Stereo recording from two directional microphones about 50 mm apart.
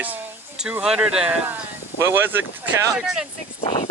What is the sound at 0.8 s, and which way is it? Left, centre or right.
Speech, centre.